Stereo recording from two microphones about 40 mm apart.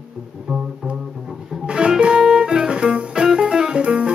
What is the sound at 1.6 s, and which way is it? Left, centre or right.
Music, right.